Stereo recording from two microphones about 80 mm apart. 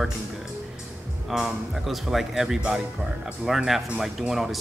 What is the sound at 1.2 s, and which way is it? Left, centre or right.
Speech, centre.